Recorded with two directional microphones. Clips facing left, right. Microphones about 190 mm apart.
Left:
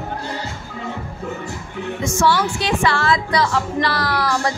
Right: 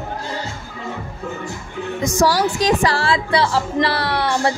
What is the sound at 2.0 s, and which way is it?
A woman's voice, 40° right (ahead or behind).